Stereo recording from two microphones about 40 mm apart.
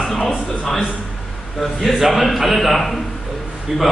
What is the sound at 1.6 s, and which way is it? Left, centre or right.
A man's voice, centre.